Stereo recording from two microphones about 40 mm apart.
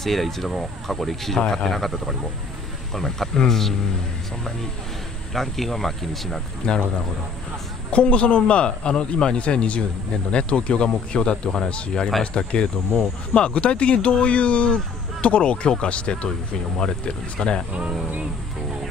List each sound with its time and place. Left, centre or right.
0.0 s speech: centre
5.3 s speech: centre
6.6 s speech: left
7.9 s speech: left